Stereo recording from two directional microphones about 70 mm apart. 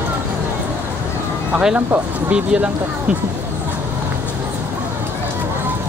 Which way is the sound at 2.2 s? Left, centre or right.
Centre.